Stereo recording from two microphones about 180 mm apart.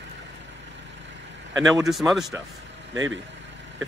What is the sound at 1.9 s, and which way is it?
Speech, centre (ahead or behind).